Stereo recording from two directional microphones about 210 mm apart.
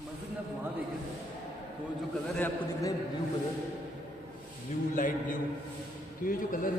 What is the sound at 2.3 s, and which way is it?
Speech, 10° left (ahead or behind).